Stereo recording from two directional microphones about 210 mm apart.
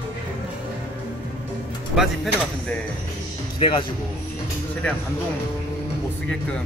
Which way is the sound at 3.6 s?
25° left (ahead or behind).